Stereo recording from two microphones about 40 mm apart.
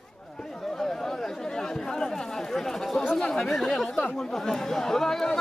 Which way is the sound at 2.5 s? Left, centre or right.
Centre.